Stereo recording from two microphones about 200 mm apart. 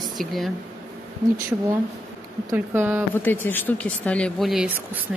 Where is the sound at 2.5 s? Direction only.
10° right (ahead or behind).